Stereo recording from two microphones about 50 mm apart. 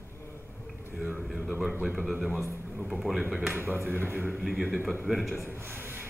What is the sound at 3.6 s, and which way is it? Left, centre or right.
Speech, right.